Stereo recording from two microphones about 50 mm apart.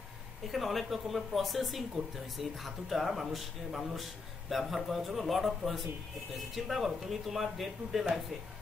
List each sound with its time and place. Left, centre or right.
0.5 s speech: centre